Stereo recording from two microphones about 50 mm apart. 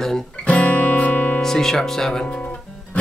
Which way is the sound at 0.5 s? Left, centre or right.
Left.